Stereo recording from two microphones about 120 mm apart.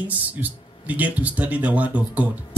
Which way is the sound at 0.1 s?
15° right (ahead or behind).